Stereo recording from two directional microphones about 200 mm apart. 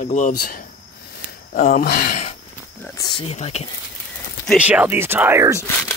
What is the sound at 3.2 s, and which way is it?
Speech, 30° left (ahead or behind).